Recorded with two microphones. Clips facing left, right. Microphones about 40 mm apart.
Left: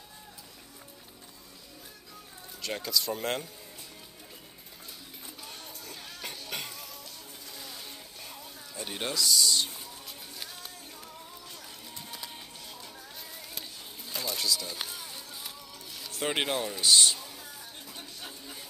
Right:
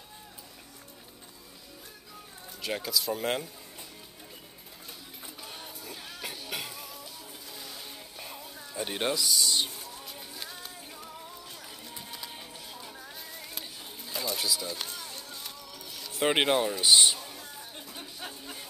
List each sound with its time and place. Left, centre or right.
2.6 s speech: centre
5.4 s music: centre
7.5 s vehicle: centre
8.2 s music: centre
9.8 s music: centre
13.6 s a sound: centre
14.7 s music: centre
16.1 s speech: centre
16.4 s a sound: centre